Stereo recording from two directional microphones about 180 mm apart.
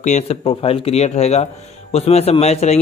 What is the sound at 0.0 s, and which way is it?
A man's voice, 40° left (ahead or behind).